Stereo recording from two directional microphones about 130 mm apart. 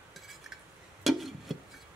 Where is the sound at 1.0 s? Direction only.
Centre (ahead or behind).